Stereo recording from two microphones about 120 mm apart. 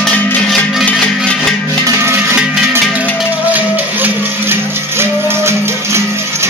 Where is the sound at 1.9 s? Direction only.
20° right (ahead or behind).